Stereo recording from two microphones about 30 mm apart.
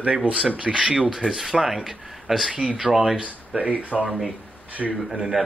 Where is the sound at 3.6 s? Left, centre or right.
Right.